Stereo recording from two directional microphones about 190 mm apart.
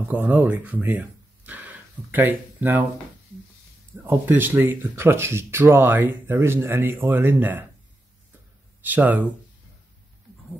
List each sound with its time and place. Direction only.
0.1 s speech: 10° right (ahead or behind)
4.0 s speech: 10° right (ahead or behind)
8.8 s speech: 10° right (ahead or behind)